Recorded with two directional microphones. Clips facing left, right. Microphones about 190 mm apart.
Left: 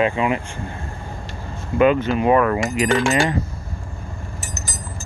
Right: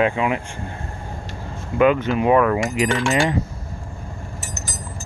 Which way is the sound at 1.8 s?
15° right (ahead or behind).